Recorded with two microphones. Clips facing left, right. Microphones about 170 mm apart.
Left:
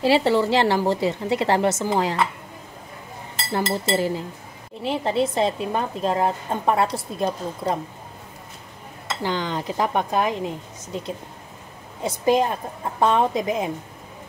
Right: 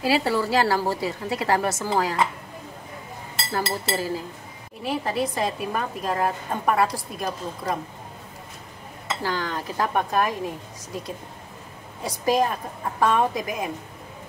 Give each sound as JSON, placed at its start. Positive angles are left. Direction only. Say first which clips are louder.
{"t": 0.0, "sound": "a woman's voice", "louder": "left 4 dB", "side_deg": 25}
{"t": 3.5, "sound": "a woman's voice", "louder": "left 4 dB", "side_deg": 20}
{"t": 9.2, "sound": "a woman's voice", "louder": "left 3 dB", "side_deg": 20}
{"t": 12.0, "sound": "a woman's voice", "louder": "left 2 dB", "side_deg": 25}